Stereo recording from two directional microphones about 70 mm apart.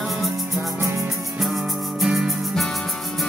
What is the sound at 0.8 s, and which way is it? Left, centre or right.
Music, right.